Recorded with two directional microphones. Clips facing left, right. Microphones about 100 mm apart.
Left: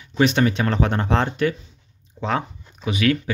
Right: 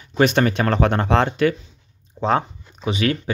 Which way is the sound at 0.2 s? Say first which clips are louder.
Right 1 dB; 50° right (ahead or behind).